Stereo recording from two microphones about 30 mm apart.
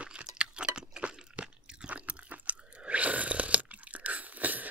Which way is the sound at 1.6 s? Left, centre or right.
Right.